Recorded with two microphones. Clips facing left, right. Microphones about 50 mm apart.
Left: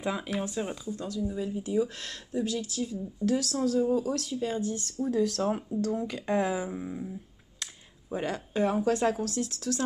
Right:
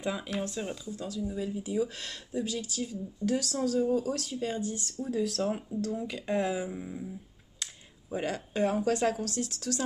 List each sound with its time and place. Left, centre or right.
0.0 s speech: centre
1.1 s speech: centre
8.1 s speech: centre